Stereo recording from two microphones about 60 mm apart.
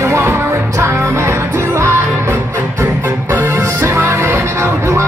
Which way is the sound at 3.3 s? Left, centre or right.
Right.